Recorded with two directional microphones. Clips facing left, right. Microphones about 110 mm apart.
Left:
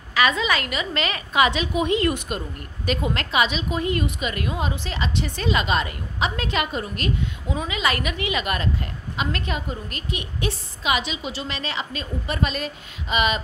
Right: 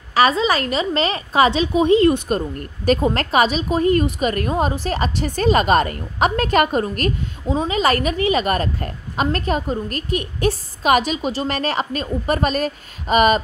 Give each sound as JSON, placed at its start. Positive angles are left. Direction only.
{"t": 0.1, "sound": "a woman's voice", "side_deg": -35}